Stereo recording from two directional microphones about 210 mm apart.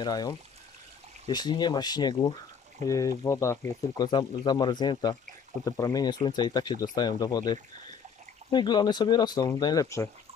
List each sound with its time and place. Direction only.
0.0 s speech: 20° left (ahead or behind)